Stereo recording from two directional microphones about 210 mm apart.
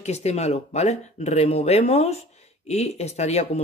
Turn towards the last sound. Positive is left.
turn(degrees=30)  # may be behind; listen again after turning